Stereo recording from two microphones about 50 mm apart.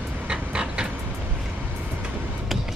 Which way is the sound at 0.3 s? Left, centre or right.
Right.